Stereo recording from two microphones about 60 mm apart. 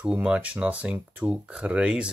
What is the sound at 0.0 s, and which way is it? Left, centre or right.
Speech, centre.